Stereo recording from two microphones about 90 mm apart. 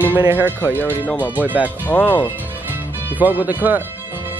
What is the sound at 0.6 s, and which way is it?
Speech, 20° left (ahead or behind).